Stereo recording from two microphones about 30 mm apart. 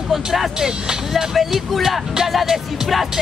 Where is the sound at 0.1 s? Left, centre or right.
Centre.